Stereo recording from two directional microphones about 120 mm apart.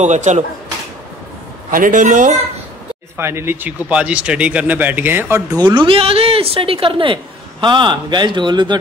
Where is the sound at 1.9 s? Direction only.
90° right.